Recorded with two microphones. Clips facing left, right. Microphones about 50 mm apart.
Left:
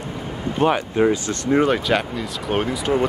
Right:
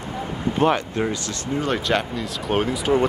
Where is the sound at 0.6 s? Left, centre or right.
Centre.